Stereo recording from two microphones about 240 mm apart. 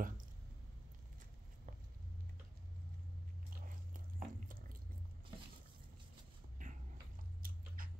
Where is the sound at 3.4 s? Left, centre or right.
Right.